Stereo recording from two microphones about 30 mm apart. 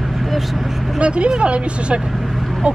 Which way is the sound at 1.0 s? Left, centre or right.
Right.